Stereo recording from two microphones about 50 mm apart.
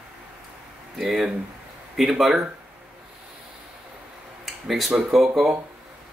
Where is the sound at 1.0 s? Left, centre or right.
Centre.